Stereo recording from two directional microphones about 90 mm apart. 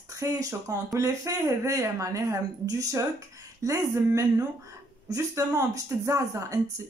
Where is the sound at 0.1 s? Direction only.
40° right (ahead or behind).